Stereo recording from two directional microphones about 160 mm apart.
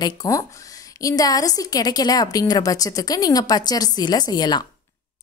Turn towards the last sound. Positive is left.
turn(degrees=25)  # may be behind; listen again after turning